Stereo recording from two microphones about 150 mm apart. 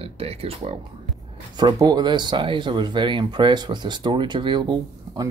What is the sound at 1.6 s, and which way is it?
Speech, 25° right (ahead or behind).